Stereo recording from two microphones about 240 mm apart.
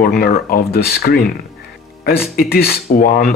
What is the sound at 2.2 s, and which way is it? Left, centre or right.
Speech, left.